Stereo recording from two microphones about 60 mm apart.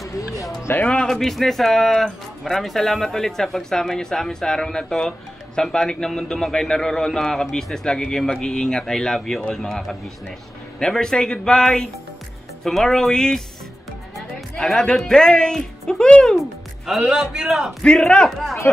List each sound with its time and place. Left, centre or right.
0.7 s speech: left
1.0 s a man's voice: centre
14.6 s a man's voice: centre
16.3 s a man's voice: centre
18.1 s a man's voice: centre